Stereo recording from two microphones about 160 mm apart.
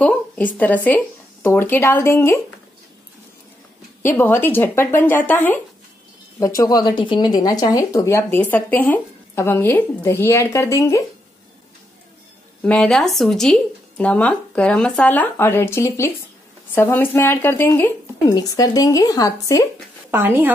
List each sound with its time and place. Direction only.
0.0 s a sound: 10° left (ahead or behind)
0.6 s speech: 10° left (ahead or behind)
4.0 s speech: 15° left (ahead or behind)
12.6 s speech: 5° left (ahead or behind); by 19.6 s 20° left (ahead or behind)
20.1 s speech: 15° right (ahead or behind)